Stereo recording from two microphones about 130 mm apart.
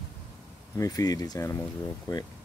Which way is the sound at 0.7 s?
25° left (ahead or behind).